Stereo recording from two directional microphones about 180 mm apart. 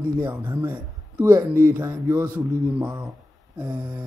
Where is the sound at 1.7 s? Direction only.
15° right (ahead or behind).